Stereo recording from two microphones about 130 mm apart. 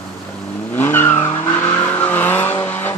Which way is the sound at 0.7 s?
15° left (ahead or behind).